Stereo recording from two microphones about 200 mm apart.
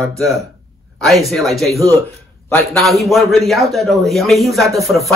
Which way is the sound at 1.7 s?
15° right (ahead or behind).